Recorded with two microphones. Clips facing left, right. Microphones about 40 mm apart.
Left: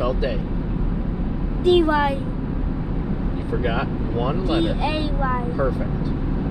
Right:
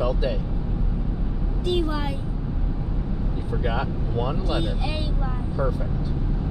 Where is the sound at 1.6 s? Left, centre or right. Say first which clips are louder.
Left 9 dB; left.